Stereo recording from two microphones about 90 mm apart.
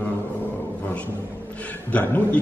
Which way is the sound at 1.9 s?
15° left (ahead or behind).